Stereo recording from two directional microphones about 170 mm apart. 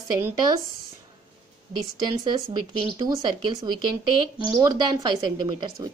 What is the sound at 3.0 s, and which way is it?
Speech, 25° right (ahead or behind).